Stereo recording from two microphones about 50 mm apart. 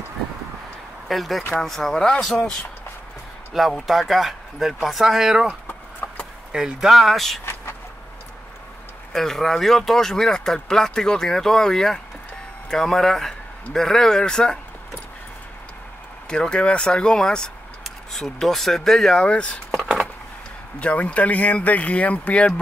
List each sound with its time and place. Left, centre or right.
1.0 s speech: centre
3.5 s speech: centre
6.5 s speech: centre
6.9 s speech: centre
9.1 s speech: centre
16.3 s speech: centre
20.8 s speech: left